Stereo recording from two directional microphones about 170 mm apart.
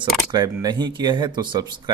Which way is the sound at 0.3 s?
25° right (ahead or behind).